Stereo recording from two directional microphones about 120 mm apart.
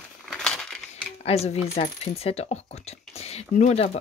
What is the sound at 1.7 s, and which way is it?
Speech, 55° left (ahead or behind).